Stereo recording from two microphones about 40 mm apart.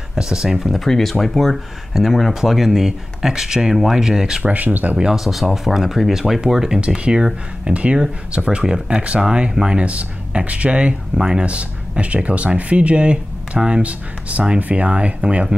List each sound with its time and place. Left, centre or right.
0.1 s speech: centre
0.7 s speech: centre
4.4 s speech: right
5.1 s speech: centre
6.4 s speech: centre
7.6 s speech: right
9.8 s speech: right
12.0 s speech: right